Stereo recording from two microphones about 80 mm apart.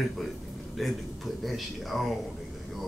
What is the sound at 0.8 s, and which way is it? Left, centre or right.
Speech, centre.